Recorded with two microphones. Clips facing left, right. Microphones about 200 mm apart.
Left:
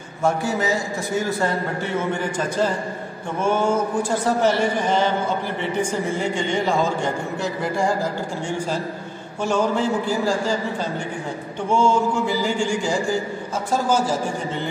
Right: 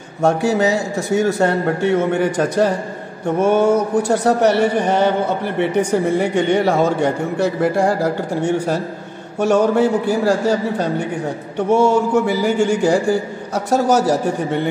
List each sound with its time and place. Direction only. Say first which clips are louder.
0.2 s a man's voice: right 6 dB; 70° right (ahead or behind)